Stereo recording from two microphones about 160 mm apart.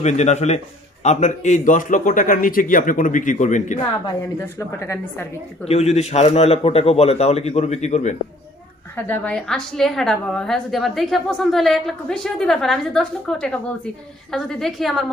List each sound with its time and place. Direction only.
0.0 s a man's voice: 45° left (ahead or behind)
4.4 s a woman's voice: 20° left (ahead or behind)
5.7 s a man's voice: 40° left (ahead or behind)
8.9 s a woman's voice: 10° left (ahead or behind)